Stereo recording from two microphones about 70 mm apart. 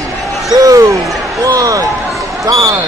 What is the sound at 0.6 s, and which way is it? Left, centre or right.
Speech, right.